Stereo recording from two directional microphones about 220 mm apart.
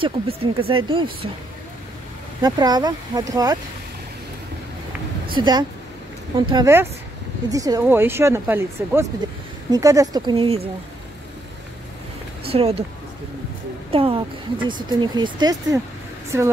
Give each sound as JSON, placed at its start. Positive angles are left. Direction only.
{"t": 0.0, "sound": "speech", "side_deg": -25}
{"t": 2.4, "sound": "speech", "side_deg": -20}
{"t": 5.3, "sound": "speech", "side_deg": -20}
{"t": 12.4, "sound": "speech", "side_deg": -25}
{"t": 13.8, "sound": "speech", "side_deg": -25}